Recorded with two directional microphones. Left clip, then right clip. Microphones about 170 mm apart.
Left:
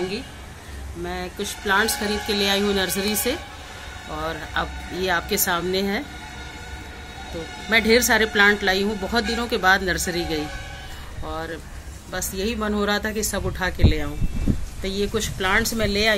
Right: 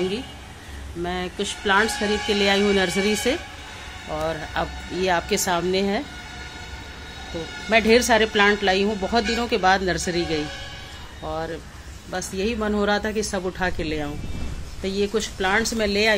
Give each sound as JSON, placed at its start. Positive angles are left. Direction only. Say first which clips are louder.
{"t": 1.0, "sound": "speech", "louder": "right 2 dB", "side_deg": -45}
{"t": 4.1, "sound": "a woman's voice", "louder": "right 1 dB", "side_deg": -25}
{"t": 7.7, "sound": "a woman's voice", "louder": "right 1 dB", "side_deg": -20}